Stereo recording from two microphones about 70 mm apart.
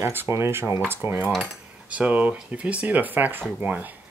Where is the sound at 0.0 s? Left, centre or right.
Right.